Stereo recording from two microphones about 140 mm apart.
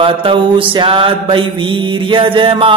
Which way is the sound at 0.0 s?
40° right (ahead or behind).